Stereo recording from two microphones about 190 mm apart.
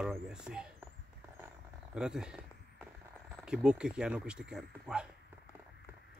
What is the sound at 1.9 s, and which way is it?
Speech, 5° right (ahead or behind).